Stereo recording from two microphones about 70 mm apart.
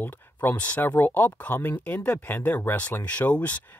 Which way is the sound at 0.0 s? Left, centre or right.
Left.